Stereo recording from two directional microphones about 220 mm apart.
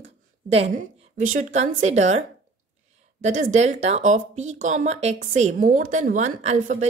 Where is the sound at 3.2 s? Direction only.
35° right (ahead or behind).